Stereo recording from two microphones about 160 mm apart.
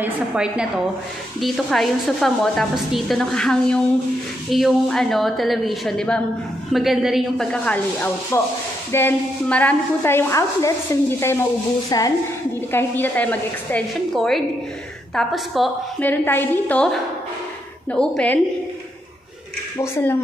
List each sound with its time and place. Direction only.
0.0 s a woman's voice: 5° right (ahead or behind); by 12.1 s 25° left (ahead or behind)
12.7 s a woman's voice: 10° left (ahead or behind)
16.0 s a woman's voice: 15° left (ahead or behind)
19.8 s a woman's voice: 15° left (ahead or behind)